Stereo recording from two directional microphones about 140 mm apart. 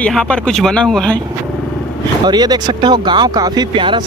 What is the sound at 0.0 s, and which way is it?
Speech, 5° left (ahead or behind).